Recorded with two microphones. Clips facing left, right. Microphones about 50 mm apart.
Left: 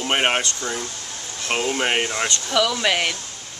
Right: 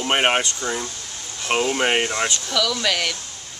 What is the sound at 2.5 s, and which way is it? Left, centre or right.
Speech, left.